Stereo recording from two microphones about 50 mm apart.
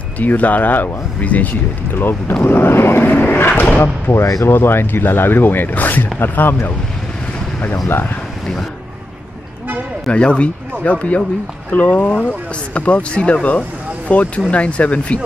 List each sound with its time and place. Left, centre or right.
0.2 s speech: left
2.0 s speech: left
3.0 s speech: left
4.1 s speech: left
10.1 s speech: left